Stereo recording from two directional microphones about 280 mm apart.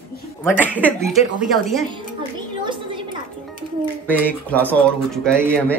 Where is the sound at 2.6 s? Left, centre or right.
Centre.